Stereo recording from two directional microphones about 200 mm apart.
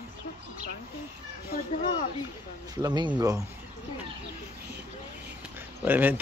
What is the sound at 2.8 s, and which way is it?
Speech, 20° right (ahead or behind).